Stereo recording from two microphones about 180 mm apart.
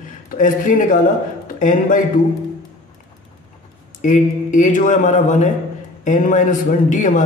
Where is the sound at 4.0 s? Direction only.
45° left (ahead or behind).